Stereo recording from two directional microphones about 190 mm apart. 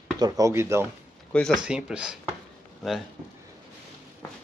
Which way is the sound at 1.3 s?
Centre (ahead or behind).